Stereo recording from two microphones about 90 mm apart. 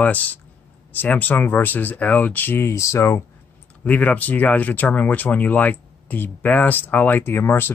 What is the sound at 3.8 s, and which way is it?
Speech, 15° left (ahead or behind).